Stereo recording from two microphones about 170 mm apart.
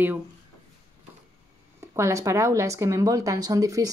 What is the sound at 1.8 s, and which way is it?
Speech, 15° right (ahead or behind).